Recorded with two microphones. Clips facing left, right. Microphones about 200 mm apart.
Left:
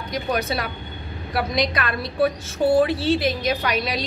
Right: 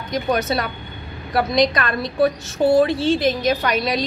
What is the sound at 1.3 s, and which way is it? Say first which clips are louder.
Speech: right 5 dB; 5° left (ahead or behind).